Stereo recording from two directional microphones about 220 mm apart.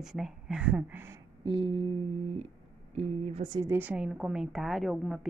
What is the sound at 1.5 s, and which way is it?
Speech, 25° right (ahead or behind).